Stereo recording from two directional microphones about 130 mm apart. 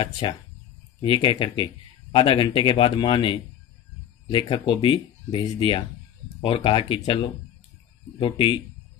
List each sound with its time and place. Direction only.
0.2 s speech: 35° left (ahead or behind)